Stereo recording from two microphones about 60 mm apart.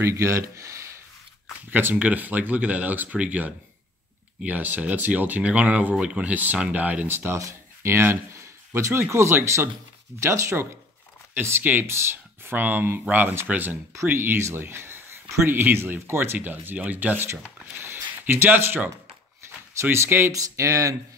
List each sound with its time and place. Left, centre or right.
0.0 s speech: right
1.7 s speech: right
7.1 s speech: right
16.3 s speech: right
19.4 s a sound: right
19.8 s speech: right
20.3 s speech: right